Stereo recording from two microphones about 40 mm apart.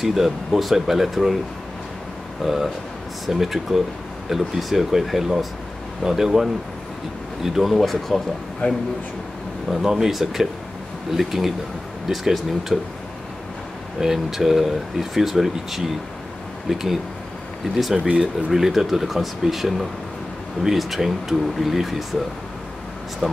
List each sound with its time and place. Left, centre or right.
0.0 s speech: centre
2.4 s speech: centre
8.6 s a man's voice: left
9.8 s speech: centre
14.0 s speech: centre
18.0 s speech: right
18.5 s speech: centre
23.2 s speech: centre